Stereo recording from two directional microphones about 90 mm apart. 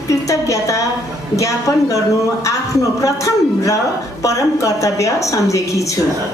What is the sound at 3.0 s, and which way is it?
A woman's voice, 35° left (ahead or behind).